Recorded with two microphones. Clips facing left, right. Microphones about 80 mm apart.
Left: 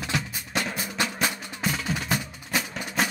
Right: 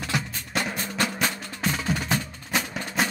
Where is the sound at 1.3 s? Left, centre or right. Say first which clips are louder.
Right 1 dB; centre.